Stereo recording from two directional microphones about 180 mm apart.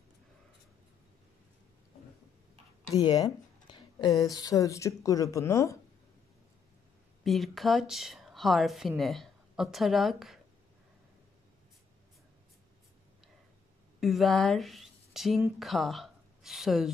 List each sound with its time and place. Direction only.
2.9 s speech: 20° left (ahead or behind)
7.2 s a woman's voice: centre (ahead or behind)
13.9 s speech: centre (ahead or behind)